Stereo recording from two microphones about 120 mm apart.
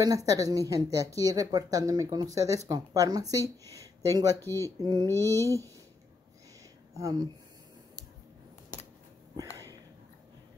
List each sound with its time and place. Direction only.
0.0 s speech: 30° right (ahead or behind)
3.7 s a sound: 30° right (ahead or behind)
4.8 s speech: 30° right (ahead or behind)
7.0 s speech: 30° right (ahead or behind)